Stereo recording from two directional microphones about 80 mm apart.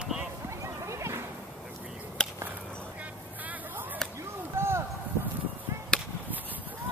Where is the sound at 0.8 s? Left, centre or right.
Right.